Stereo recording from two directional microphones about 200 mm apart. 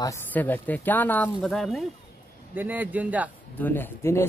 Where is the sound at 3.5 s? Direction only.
10° left (ahead or behind).